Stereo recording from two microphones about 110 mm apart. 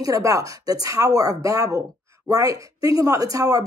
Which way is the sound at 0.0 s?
30° right (ahead or behind).